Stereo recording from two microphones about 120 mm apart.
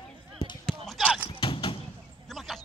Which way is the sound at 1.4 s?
45° left (ahead or behind).